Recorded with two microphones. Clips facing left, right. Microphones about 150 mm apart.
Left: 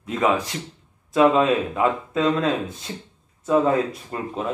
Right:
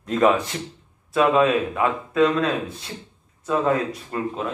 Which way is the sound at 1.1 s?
20° left (ahead or behind).